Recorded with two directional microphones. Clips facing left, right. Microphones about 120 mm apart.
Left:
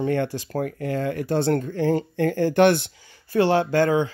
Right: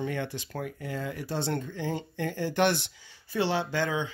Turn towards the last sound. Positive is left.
turn(degrees=50)  # may be behind; listen again after turning